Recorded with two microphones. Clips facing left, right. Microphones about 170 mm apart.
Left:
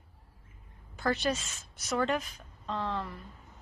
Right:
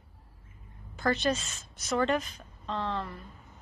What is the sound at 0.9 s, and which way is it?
A woman's voice, 10° left (ahead or behind).